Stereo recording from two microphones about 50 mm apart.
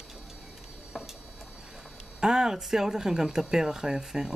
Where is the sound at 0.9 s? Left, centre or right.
Centre.